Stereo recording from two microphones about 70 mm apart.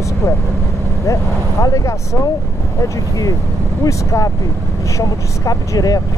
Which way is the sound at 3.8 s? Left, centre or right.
Left.